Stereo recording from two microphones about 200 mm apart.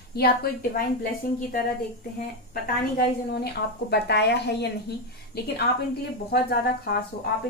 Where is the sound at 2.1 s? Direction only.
45° left (ahead or behind).